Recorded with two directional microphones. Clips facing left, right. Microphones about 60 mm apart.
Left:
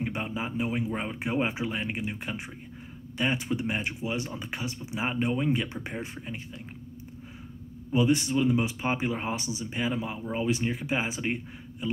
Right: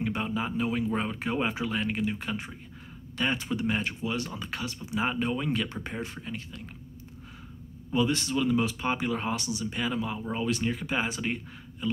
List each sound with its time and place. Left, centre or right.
0.0 s speech: left
7.9 s speech: centre